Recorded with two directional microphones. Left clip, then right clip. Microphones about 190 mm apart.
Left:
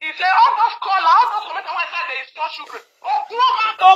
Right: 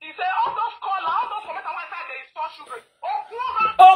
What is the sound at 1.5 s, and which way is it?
Chuckle, 50° left (ahead or behind).